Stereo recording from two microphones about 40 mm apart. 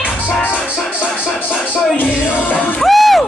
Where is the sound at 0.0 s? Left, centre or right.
Left.